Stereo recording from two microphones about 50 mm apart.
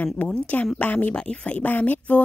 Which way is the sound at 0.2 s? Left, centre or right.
Left.